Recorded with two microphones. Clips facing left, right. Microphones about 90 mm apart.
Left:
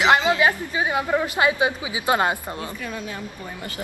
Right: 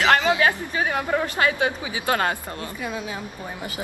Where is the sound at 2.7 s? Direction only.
15° right (ahead or behind).